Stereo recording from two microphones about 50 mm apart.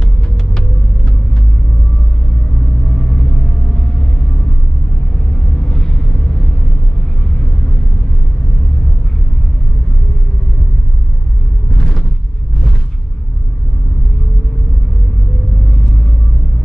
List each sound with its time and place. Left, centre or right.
2.9 s vehicle: left
5.7 s vehicle: centre
11.7 s a sound: centre